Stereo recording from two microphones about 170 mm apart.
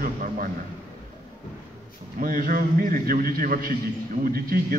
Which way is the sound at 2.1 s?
55° right (ahead or behind).